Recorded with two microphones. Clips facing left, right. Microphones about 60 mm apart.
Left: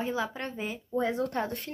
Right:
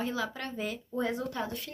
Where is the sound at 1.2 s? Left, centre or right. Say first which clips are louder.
Left 4 dB; left.